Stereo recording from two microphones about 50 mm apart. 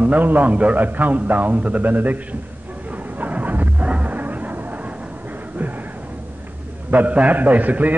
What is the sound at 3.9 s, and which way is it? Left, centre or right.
Music, right.